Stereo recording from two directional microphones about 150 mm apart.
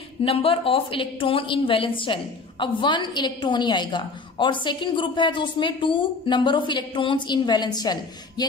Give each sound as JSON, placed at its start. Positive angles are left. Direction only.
{"t": 0.2, "sound": "a woman's voice", "side_deg": 40}